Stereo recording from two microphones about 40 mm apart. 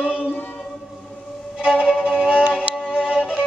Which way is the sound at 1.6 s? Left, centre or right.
Centre.